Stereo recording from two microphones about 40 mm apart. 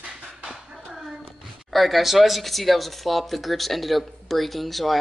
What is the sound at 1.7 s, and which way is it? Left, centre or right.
Speech, centre.